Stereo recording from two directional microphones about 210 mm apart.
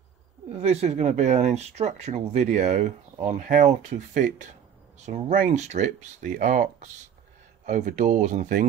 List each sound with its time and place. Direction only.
0.5 s speech: 30° right (ahead or behind)